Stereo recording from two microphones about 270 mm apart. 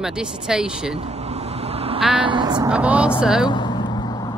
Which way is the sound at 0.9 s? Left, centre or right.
Right.